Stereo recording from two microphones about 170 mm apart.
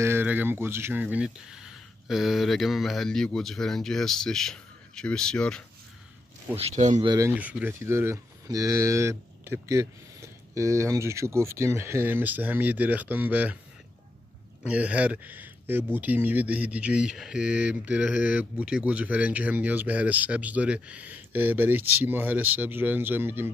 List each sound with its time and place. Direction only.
0.0 s speech: 15° right (ahead or behind); by 5.6 s 5° left (ahead or behind)
6.5 s speech: 40° right (ahead or behind)
7.0 s speech: 25° right (ahead or behind)
7.2 s speech: 10° right (ahead or behind)
14.6 s speech: 10° right (ahead or behind)